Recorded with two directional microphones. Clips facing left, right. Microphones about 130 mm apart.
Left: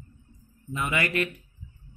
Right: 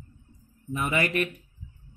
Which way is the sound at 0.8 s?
25° right (ahead or behind).